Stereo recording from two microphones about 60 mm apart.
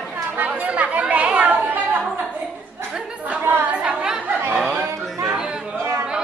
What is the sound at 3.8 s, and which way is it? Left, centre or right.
Chatter, centre.